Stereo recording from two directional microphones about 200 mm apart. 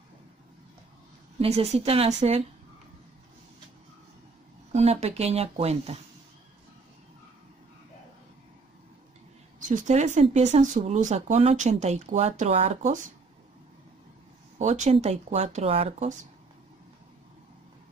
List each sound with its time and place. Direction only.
1.4 s speech: 30° right (ahead or behind)
4.7 s speech: 30° right (ahead or behind)
9.7 s speech: 40° right (ahead or behind)
14.6 s speech: 35° right (ahead or behind)